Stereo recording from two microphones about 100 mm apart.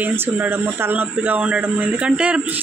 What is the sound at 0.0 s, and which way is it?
Speech, 20° right (ahead or behind).